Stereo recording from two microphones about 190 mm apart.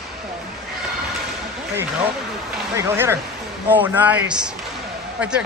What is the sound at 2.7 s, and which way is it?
A man's voice, 15° right (ahead or behind).